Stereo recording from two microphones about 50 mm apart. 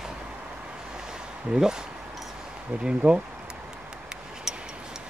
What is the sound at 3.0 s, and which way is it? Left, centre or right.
Speech, right.